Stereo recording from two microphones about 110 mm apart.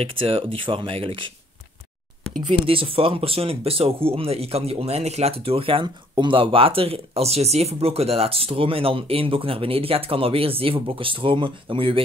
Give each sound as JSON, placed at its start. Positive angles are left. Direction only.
{"t": 0.0, "sound": "speech", "side_deg": -60}
{"t": 2.6, "sound": "speech", "side_deg": -55}